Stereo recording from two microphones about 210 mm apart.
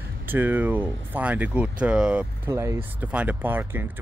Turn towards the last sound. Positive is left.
turn(degrees=-10)  # may be behind; listen again after turning